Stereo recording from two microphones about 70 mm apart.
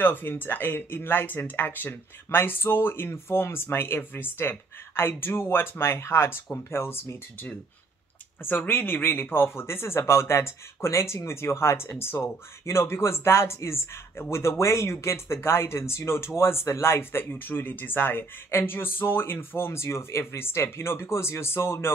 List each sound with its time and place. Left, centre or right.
0.0 s speech: left
8.5 s speech: left